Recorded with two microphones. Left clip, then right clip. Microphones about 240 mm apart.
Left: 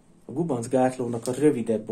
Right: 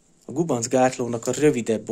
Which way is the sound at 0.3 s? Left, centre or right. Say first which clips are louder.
Right 3 dB; right.